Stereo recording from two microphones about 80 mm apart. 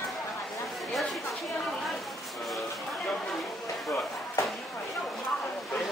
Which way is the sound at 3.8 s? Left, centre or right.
Left.